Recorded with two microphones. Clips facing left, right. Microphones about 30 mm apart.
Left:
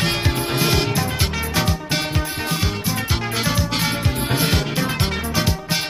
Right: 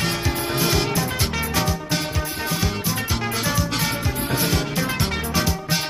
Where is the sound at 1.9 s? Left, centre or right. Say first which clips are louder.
Left 2 dB; left.